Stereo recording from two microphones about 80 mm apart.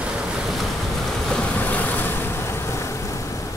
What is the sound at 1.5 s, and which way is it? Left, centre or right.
Vehicle, left.